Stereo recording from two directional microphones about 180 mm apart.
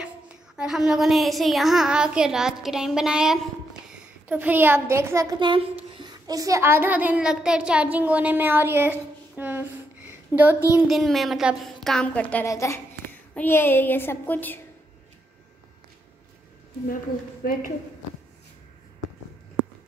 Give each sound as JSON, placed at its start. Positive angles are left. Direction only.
{"t": 0.6, "sound": "a child's voice", "side_deg": -5}
{"t": 10.9, "sound": "a woman's voice", "side_deg": 0}
{"t": 16.8, "sound": "a woman's voice", "side_deg": 50}